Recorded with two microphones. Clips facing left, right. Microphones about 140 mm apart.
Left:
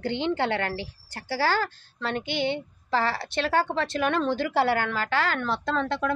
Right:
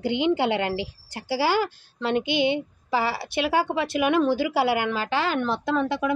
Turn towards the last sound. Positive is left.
turn(degrees=-10)  # may be behind; listen again after turning